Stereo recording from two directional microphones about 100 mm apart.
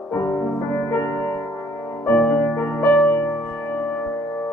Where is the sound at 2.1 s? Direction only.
15° left (ahead or behind).